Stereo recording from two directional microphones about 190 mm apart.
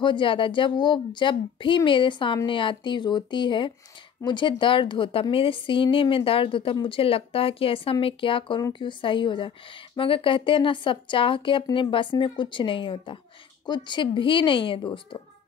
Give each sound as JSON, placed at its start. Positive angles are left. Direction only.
{"t": 0.0, "sound": "a woman's voice", "side_deg": 25}